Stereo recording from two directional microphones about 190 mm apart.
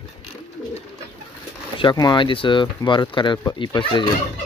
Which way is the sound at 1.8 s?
25° left (ahead or behind).